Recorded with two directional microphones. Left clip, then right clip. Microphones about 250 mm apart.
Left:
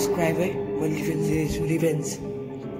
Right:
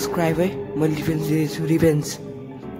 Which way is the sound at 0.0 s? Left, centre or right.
Centre.